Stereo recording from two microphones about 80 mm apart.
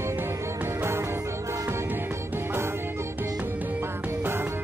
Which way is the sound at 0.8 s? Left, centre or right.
Right.